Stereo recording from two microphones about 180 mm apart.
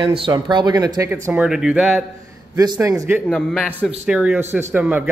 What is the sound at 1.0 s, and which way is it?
Speech, 10° right (ahead or behind).